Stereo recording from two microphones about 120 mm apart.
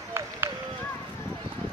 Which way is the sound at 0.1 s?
20° right (ahead or behind).